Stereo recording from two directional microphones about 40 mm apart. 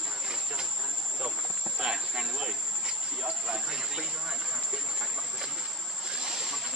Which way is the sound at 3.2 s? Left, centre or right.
Centre.